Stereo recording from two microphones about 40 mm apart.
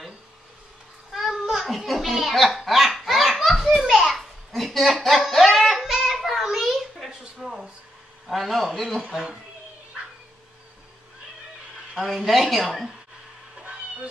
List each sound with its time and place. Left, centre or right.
1.1 s babbling: centre
1.9 s a child's voice: centre
3.0 s belly laugh: centre
3.4 s a sound: centre
8.3 s speech: centre
9.0 s speech: right
12.3 s speech: centre